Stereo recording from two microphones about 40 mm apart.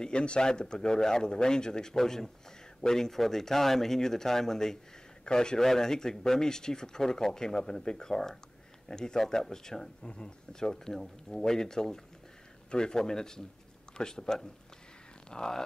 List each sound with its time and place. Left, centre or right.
0.0 s a man's voice: left